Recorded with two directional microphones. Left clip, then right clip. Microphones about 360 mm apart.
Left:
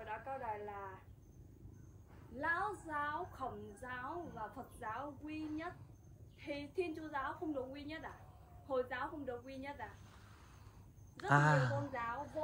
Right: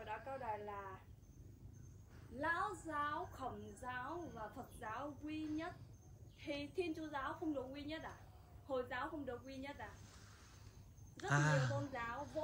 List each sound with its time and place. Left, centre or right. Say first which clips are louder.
0.0 s a woman's voice: left 2 dB; centre
2.3 s a woman's voice: left 2 dB; centre
11.1 s a woman's voice: left 6 dB; centre